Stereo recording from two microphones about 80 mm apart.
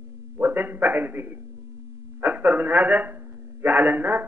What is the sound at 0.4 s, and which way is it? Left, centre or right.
A man's voice, right.